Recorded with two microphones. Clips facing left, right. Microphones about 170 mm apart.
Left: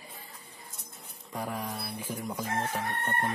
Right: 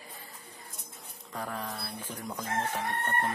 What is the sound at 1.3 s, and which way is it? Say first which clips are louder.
Speech: left 2 dB; 10° left (ahead or behind).